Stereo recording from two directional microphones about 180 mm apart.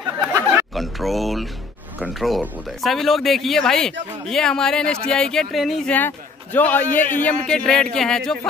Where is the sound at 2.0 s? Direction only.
Centre (ahead or behind).